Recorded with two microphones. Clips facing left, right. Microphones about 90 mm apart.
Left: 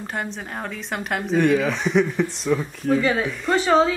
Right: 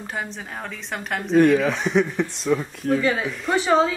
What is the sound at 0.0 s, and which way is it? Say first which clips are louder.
A woman's voice: left 2 dB; centre (ahead or behind).